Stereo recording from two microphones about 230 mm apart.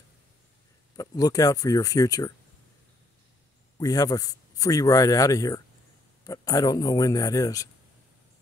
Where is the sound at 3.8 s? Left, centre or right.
Centre.